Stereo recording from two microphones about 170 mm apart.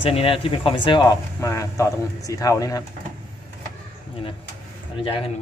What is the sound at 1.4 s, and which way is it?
Speech, 15° left (ahead or behind).